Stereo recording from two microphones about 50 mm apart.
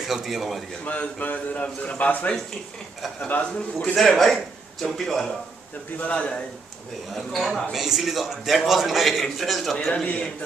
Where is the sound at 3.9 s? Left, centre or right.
Centre.